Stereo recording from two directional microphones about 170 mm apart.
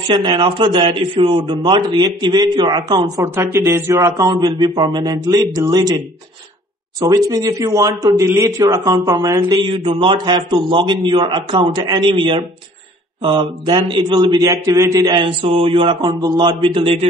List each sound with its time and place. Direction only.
0.1 s speech: 30° right (ahead or behind)
3.3 s speech: 15° right (ahead or behind)
7.0 s speech: 20° right (ahead or behind)